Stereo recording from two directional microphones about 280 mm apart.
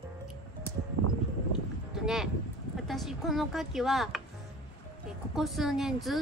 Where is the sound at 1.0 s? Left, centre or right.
Right.